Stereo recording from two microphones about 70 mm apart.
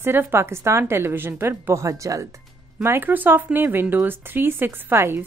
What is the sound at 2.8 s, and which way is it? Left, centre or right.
Speech, right.